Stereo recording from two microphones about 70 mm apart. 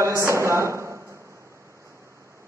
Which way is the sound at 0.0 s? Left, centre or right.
Right.